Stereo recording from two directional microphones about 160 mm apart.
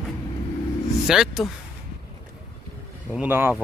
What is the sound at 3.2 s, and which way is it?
Speech, 15° right (ahead or behind).